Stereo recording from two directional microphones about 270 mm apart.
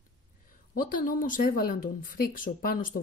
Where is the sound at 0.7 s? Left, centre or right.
Left.